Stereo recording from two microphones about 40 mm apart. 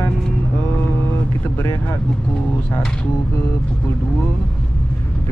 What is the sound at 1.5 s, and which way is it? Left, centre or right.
Speech, left.